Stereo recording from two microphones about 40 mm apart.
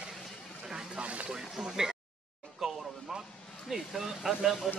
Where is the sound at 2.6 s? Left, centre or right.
Centre.